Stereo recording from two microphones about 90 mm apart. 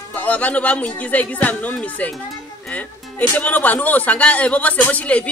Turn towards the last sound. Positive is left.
turn(degrees=15)  # may be behind; listen again after turning